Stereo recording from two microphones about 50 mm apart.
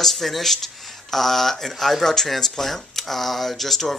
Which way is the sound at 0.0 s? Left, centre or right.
Centre.